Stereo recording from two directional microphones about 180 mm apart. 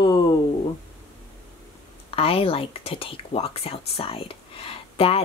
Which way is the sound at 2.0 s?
30° left (ahead or behind).